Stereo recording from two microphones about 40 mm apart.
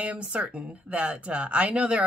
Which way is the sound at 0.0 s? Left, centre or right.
Right.